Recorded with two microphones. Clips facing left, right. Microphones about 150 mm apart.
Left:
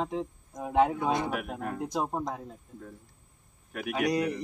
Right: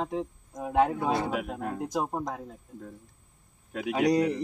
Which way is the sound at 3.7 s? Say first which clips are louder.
Right 4 dB; 20° right (ahead or behind).